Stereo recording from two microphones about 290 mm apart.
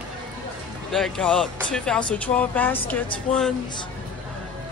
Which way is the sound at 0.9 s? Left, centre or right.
Centre.